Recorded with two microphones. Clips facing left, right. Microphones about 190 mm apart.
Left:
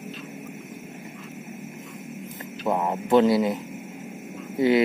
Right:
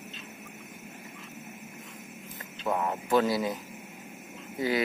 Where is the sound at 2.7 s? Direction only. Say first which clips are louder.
Left 6 dB; 25° left (ahead or behind).